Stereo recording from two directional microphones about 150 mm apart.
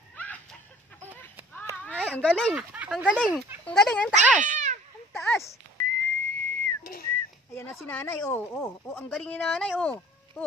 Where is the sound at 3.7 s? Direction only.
5° left (ahead or behind).